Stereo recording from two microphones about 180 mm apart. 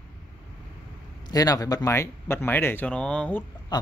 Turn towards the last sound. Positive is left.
turn(degrees=5)  # may be behind; listen again after turning